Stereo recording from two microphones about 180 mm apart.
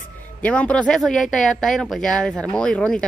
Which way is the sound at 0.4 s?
5° left (ahead or behind).